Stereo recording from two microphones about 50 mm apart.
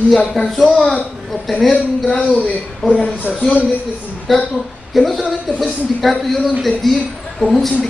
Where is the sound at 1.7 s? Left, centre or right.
Left.